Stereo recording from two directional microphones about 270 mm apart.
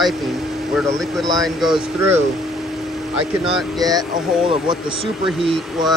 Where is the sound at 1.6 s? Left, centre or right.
Centre.